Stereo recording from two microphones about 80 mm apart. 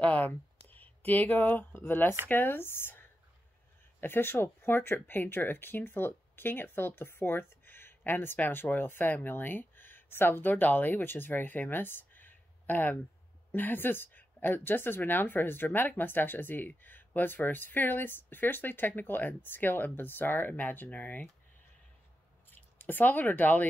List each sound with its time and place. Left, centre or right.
0.0 s a woman's voice: centre
22.5 s speech: left